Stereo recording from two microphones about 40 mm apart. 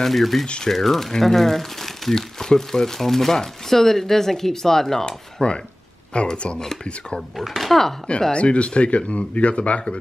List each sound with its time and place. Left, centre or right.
0.0 s speech: centre
5.0 s speech: left
7.2 s speech: centre
8.3 s speech: left